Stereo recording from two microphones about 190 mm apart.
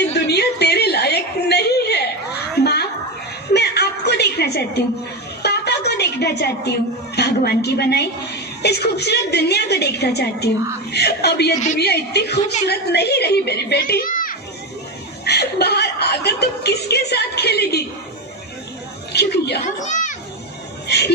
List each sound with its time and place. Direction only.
0.1 s a sound: 60° left (ahead or behind)
5.4 s music: 60° left (ahead or behind)
7.2 s a woman's voice: 60° left (ahead or behind)
15.2 s speech: 60° left (ahead or behind)
19.1 s a woman's voice: 60° left (ahead or behind)
19.8 s children playing: 40° left (ahead or behind)
20.8 s speech: 60° left (ahead or behind)